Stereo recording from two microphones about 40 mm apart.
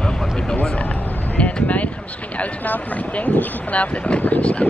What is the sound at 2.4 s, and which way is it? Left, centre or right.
Speech, left.